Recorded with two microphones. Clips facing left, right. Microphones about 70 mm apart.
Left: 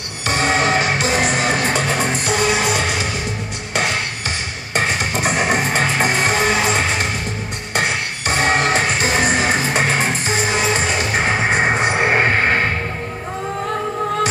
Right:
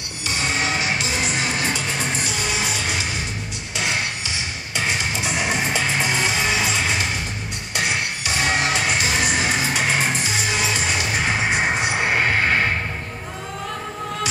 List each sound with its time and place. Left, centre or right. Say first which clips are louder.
0.3 s music: left 7 dB; left
4.7 s music: left 5 dB; left